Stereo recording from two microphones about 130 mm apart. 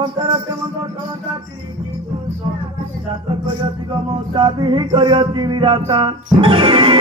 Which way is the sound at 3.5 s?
40° right (ahead or behind).